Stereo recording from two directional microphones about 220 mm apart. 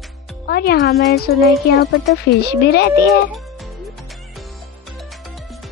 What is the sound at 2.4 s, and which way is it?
Speech, 45° left (ahead or behind).